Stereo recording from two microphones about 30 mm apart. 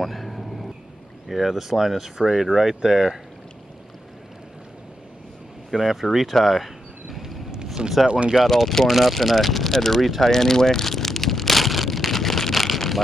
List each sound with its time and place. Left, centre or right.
0.0 s vehicle: centre
1.3 s speech: centre
5.7 s speech: centre
6.1 s a sound: centre
7.8 s speech: right
8.5 s speech: centre
8.8 s speech: centre
9.1 s a sound: centre